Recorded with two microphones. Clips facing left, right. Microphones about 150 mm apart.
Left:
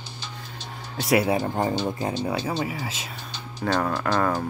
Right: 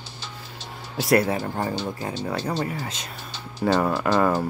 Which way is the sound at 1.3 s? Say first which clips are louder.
Left 3 dB; 20° left (ahead or behind).